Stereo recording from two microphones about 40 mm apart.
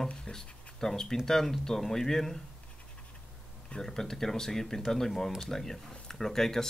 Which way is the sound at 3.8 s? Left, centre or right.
Centre.